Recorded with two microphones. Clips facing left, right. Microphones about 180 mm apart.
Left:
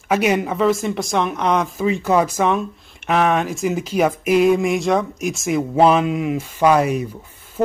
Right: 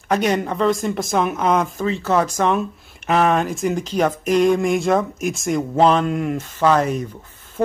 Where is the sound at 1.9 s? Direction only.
15° left (ahead or behind).